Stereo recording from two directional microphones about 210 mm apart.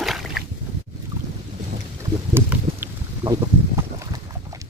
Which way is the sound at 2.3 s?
10° right (ahead or behind).